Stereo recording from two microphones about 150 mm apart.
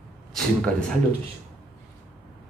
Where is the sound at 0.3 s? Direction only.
Centre (ahead or behind).